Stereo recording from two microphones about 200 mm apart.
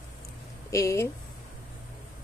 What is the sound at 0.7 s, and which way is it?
Speech, 15° left (ahead or behind).